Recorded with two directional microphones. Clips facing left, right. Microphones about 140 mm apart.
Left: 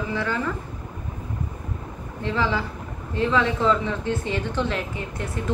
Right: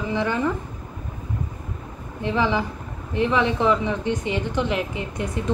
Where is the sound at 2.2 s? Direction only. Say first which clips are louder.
Right 3 dB; 15° right (ahead or behind).